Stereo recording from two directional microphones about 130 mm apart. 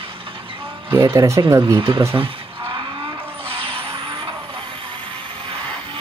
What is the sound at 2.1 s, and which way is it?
Vehicle, 45° right (ahead or behind).